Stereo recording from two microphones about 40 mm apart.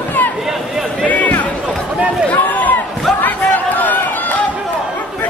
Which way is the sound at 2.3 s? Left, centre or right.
Left.